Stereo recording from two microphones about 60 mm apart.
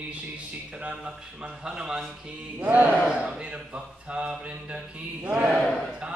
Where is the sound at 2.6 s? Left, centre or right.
Right.